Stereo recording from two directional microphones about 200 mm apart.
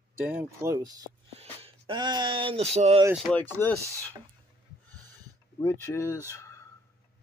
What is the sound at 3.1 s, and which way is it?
Speech, 10° left (ahead or behind).